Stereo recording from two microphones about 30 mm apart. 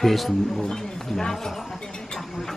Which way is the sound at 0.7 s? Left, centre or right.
Centre.